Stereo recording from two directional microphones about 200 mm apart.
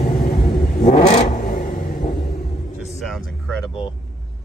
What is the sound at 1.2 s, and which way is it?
Vehicle, 45° left (ahead or behind).